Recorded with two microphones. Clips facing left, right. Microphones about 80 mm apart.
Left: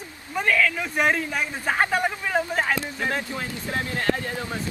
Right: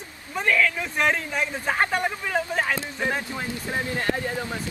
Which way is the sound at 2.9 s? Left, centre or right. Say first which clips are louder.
Even; centre.